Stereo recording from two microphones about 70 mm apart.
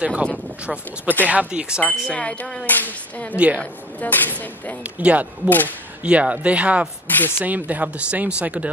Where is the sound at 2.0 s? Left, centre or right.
Centre.